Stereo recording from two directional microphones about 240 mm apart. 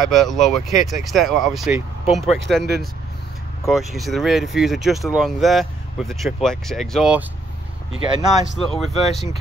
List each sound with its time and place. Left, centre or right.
0.1 s speech: centre
2.6 s speech: right
3.6 s speech: centre
8.1 s speech: centre
8.5 s speech: centre